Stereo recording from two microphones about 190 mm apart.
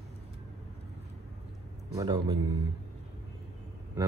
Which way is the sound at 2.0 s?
20° right (ahead or behind).